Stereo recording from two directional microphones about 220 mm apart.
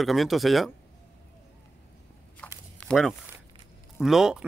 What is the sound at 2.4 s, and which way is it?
Walk, 5° left (ahead or behind).